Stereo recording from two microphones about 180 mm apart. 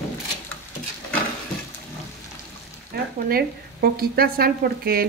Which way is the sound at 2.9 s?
60° right (ahead or behind).